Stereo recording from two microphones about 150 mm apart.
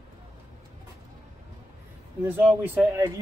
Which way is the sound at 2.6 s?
20° right (ahead or behind).